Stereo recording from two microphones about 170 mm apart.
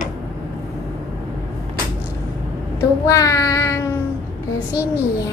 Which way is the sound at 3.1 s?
20° left (ahead or behind).